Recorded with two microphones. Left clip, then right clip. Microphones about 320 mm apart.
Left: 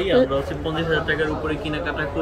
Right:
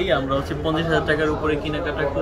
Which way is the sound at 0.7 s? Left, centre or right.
Centre.